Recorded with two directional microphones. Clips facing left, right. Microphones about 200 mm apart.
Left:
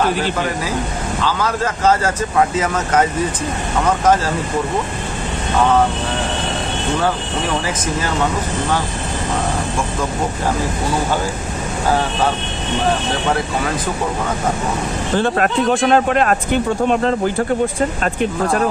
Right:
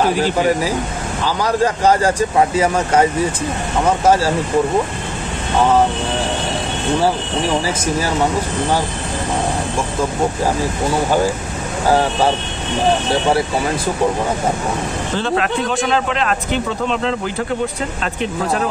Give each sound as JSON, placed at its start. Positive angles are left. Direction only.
{"t": 1.2, "sound": "speech", "side_deg": -15}
{"t": 4.0, "sound": "speech", "side_deg": -10}
{"t": 15.1, "sound": "speech", "side_deg": 50}